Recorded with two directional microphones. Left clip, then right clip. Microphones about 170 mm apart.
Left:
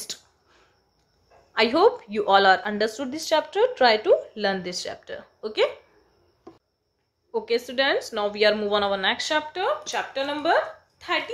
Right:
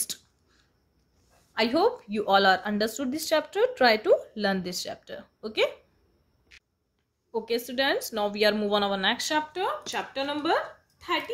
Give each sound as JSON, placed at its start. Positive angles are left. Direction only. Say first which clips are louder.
{"t": 0.0, "sound": "a sound", "louder": "left 1 dB", "side_deg": -20}
{"t": 1.5, "sound": "speech", "louder": "left 5 dB", "side_deg": -10}
{"t": 7.2, "sound": "speech", "louder": "left 4 dB", "side_deg": -20}